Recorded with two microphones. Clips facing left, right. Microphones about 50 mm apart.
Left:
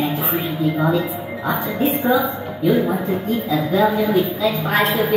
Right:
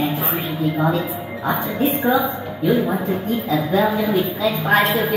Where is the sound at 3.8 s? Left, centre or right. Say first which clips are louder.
Left 2 dB; centre.